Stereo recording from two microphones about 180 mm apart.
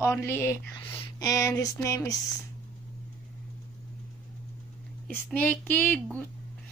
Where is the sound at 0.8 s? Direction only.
30° left (ahead or behind).